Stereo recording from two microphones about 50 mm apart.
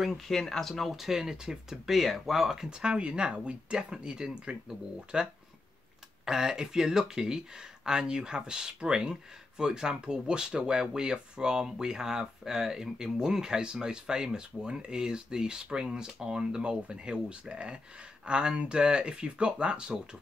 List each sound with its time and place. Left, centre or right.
0.3 s speech: centre; by 20.0 s right